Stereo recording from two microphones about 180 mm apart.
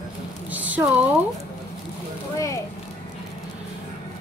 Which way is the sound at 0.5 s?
10° right (ahead or behind).